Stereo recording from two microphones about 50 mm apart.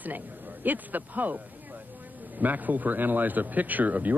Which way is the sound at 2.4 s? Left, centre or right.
Right.